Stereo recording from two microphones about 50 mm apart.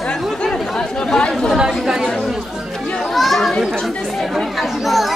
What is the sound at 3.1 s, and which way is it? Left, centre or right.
Chatter, centre.